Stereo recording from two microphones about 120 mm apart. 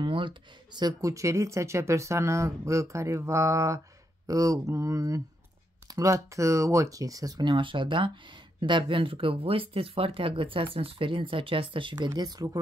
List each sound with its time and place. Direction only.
0.0 s speech: 45° right (ahead or behind)